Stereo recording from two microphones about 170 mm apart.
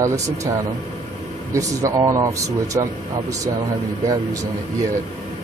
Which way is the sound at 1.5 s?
20° right (ahead or behind).